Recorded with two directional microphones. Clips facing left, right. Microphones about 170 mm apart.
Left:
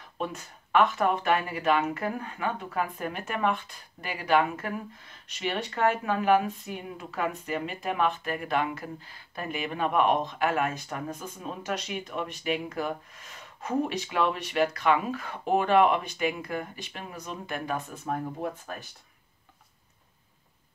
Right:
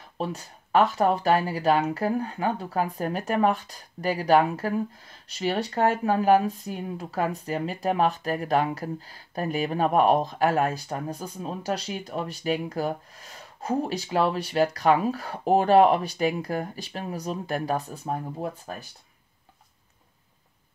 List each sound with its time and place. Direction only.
0.2 s speech: 35° right (ahead or behind)